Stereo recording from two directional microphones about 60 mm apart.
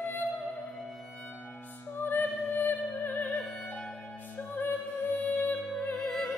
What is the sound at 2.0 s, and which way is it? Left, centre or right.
Music, left.